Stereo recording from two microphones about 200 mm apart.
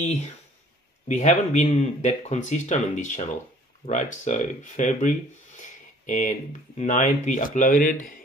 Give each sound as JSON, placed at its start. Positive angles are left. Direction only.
{"t": 1.0, "sound": "speech", "side_deg": 35}
{"t": 5.6, "sound": "a sound", "side_deg": 35}
{"t": 6.8, "sound": "speech", "side_deg": 35}